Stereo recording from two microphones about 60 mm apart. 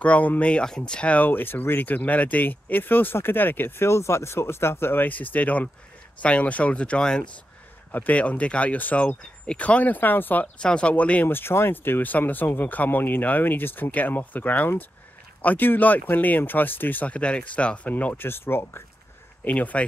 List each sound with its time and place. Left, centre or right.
0.0 s speech: left
5.0 s speech: left
7.9 s speech: left
10.6 s speech: centre
11.2 s speech: left
17.1 s speech: centre
18.1 s speech: left
19.4 s speech: left